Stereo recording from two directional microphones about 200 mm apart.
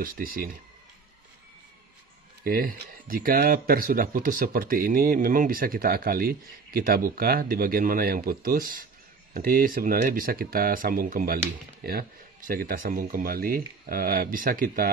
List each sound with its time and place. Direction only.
0.0 s speech: 45° right (ahead or behind)
2.4 s speech: 45° right (ahead or behind)